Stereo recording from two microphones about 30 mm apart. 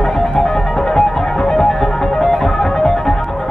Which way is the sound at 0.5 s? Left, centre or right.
Centre.